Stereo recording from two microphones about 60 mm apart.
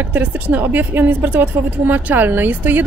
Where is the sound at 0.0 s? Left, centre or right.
Right.